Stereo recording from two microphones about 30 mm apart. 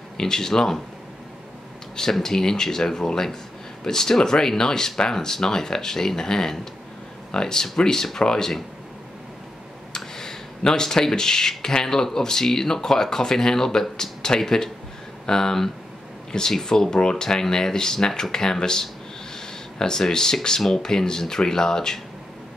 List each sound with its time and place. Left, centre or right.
0.2 s speech: centre
2.2 s speech: centre
9.9 s speech: centre